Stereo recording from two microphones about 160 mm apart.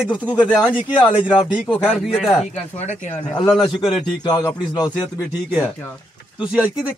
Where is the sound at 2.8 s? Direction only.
50° left (ahead or behind).